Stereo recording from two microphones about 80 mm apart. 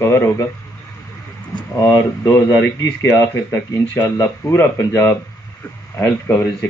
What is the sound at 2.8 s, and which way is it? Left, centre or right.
Speech, left.